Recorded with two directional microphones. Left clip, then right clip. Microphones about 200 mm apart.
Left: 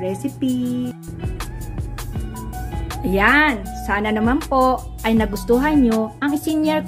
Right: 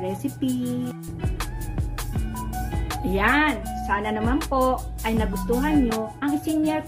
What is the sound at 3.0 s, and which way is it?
A woman's voice, 15° left (ahead or behind).